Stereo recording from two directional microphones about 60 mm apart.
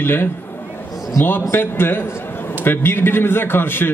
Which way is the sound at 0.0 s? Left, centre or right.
Left.